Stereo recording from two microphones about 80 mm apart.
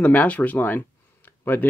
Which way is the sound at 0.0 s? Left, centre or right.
Left.